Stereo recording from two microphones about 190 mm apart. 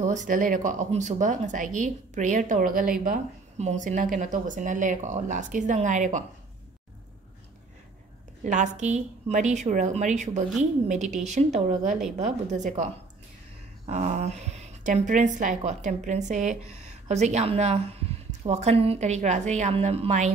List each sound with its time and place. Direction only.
0.0 s speech: 40° right (ahead or behind)
8.5 s speech: 40° right (ahead or behind)